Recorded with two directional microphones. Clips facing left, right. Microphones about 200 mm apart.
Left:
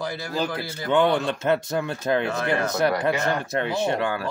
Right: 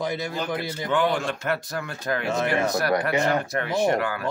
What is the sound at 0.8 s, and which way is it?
Speech, 25° left (ahead or behind).